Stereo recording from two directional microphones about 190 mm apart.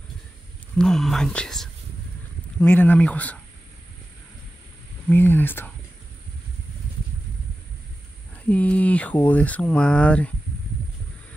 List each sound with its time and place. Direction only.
0.7 s speech: centre (ahead or behind)
5.1 s speech: 10° left (ahead or behind)
8.5 s speech: 5° left (ahead or behind)